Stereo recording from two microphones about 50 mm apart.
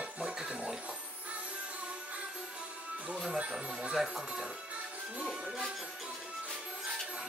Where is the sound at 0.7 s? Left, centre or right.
Right.